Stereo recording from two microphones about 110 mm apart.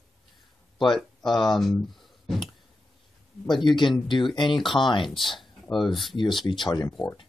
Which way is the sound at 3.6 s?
45° left (ahead or behind).